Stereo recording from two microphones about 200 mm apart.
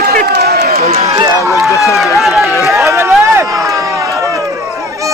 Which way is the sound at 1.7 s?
15° left (ahead or behind).